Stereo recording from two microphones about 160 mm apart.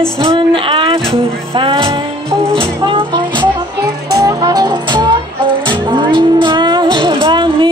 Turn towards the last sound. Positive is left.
turn(degrees=-30)  # may be behind; listen again after turning